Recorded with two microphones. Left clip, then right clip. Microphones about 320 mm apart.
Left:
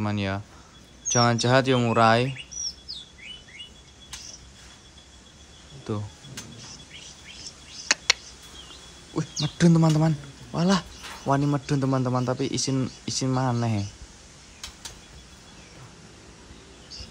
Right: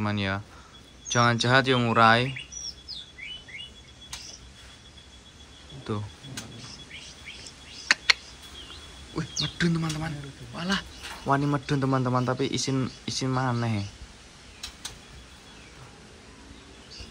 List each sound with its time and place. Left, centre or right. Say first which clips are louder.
0.0 s a man's voice: even; centre
5.9 s a man's voice: left 1 dB; centre
7.9 s a sound: right 1 dB; centre
9.1 s a man's voice: even; centre
11.2 s a man's voice: left 1 dB; centre